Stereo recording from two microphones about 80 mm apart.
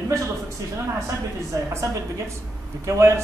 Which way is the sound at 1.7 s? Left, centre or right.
Right.